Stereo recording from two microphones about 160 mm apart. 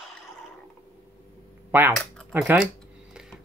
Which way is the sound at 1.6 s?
10° right (ahead or behind).